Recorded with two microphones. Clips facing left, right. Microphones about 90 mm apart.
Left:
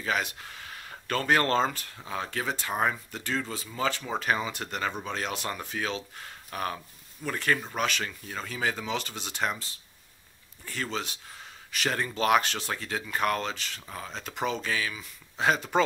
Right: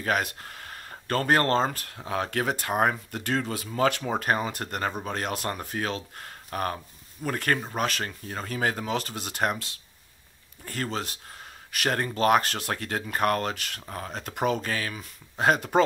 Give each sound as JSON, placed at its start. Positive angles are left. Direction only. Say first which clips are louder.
{"t": 0.0, "sound": "speech", "louder": "right 3 dB", "side_deg": -50}
{"t": 10.6, "sound": "speech", "louder": "right 2 dB", "side_deg": -45}
{"t": 13.0, "sound": "speech", "louder": "right 3 dB", "side_deg": -45}